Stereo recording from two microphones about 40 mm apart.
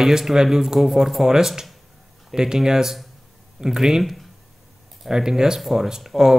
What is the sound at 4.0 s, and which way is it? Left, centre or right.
Speech, centre.